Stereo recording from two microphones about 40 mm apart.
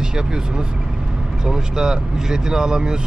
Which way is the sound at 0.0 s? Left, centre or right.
Centre.